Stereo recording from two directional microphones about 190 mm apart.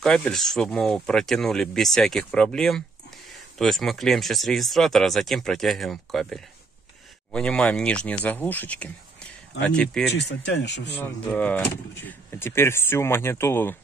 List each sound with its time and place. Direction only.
0.0 s speech: 5° left (ahead or behind)
10.1 s speech: 65° left (ahead or behind)
10.9 s speech: 10° left (ahead or behind)